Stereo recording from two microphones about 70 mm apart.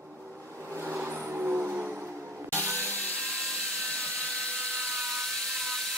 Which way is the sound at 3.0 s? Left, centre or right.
Centre.